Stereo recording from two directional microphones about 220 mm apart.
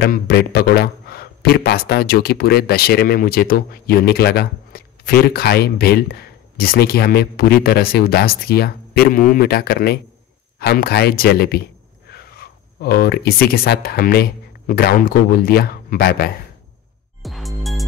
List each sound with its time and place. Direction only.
0.0 s a man's voice: 45° left (ahead or behind)
17.2 s music: centre (ahead or behind)